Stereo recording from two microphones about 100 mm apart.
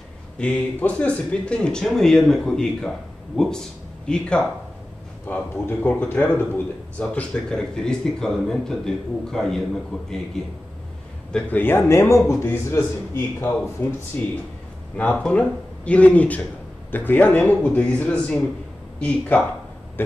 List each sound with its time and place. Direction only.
0.4 s a man's voice: 15° left (ahead or behind)
11.3 s a man's voice: 20° left (ahead or behind)